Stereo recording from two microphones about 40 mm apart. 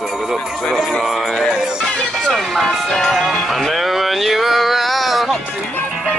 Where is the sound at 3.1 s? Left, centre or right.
Centre.